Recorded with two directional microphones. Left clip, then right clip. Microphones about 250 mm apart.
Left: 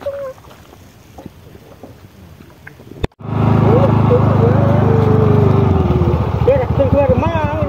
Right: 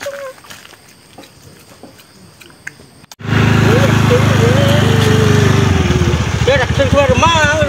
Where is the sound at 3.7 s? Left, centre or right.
Right.